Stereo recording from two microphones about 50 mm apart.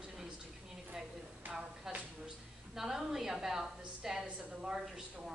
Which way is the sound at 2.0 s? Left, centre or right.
Centre.